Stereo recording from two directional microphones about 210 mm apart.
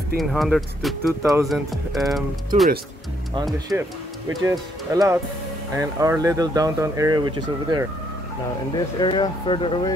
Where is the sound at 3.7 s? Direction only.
10° right (ahead or behind).